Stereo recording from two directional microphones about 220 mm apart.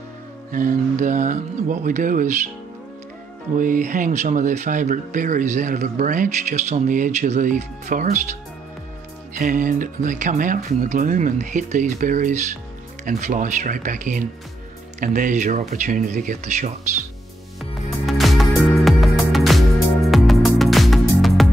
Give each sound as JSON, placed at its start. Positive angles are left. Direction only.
{"t": 0.5, "sound": "speech", "side_deg": -35}
{"t": 3.5, "sound": "speech", "side_deg": -35}
{"t": 18.0, "sound": "music", "side_deg": 0}